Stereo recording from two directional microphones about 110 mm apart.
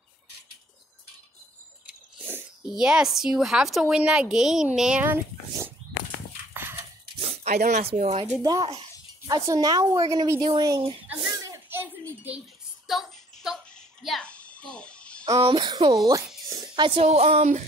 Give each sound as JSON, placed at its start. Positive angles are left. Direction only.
{"t": 1.9, "sound": "a sound", "side_deg": -15}
{"t": 2.7, "sound": "a woman's voice", "side_deg": -5}
{"t": 5.0, "sound": "dog", "side_deg": -20}
{"t": 7.2, "sound": "speech", "side_deg": -75}
{"t": 8.4, "sound": "a woman's voice", "side_deg": -35}
{"t": 10.4, "sound": "speech", "side_deg": -45}
{"t": 11.2, "sound": "a sound", "side_deg": -30}
{"t": 12.8, "sound": "child singing", "side_deg": -5}
{"t": 13.7, "sound": "a sound", "side_deg": 5}
{"t": 14.3, "sound": "babbling", "side_deg": 10}
{"t": 15.5, "sound": "speech", "side_deg": -45}
{"t": 16.6, "sound": "a sound", "side_deg": -45}
{"t": 17.0, "sound": "speech", "side_deg": -75}